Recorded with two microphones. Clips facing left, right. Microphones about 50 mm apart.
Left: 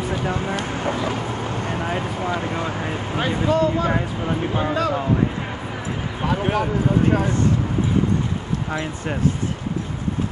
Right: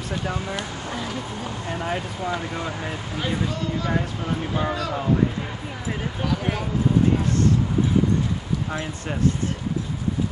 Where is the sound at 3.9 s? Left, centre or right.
Centre.